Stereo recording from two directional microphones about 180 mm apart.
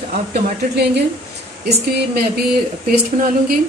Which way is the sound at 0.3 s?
65° right (ahead or behind).